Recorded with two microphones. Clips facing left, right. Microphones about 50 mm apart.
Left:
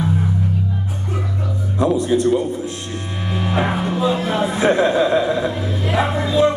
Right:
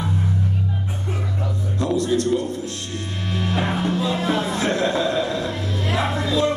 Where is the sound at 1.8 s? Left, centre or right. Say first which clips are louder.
Left 4 dB; centre.